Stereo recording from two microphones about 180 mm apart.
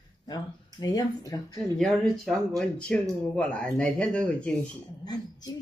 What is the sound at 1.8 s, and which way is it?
Speech, centre (ahead or behind).